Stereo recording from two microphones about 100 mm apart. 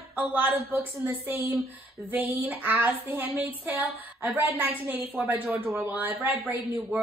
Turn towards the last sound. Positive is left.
turn(degrees=-20)  # may be behind; listen again after turning